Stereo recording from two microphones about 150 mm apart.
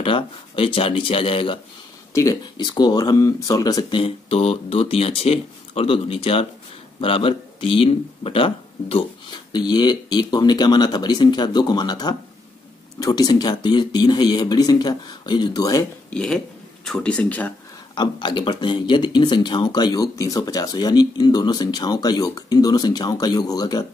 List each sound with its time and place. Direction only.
0.0 s speech: 35° left (ahead or behind)
4.0 s speech: 40° left (ahead or behind); by 15.8 s 25° left (ahead or behind)
16.1 s speech: 5° left (ahead or behind)
17.9 s speech: 30° left (ahead or behind)